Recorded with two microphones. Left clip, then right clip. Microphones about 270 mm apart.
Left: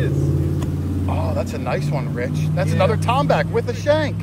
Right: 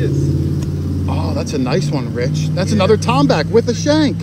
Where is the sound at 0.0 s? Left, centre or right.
Left.